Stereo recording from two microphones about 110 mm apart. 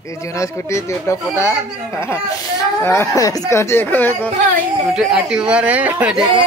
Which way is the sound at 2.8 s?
25° left (ahead or behind).